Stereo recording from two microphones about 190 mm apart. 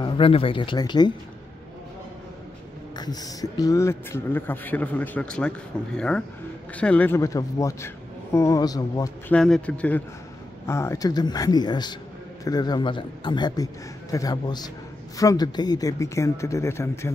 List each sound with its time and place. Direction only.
0.0 s speech: 30° left (ahead or behind)
3.0 s speech: 20° left (ahead or behind)
9.3 s speech: 5° left (ahead or behind)